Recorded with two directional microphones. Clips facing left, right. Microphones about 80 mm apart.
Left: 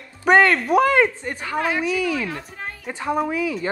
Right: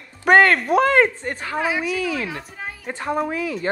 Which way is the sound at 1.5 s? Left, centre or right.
Centre.